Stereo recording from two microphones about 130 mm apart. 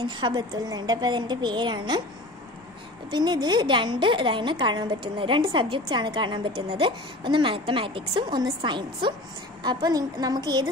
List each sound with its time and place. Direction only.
0.0 s a woman's voice: 35° right (ahead or behind)
3.1 s a woman's voice: 35° right (ahead or behind)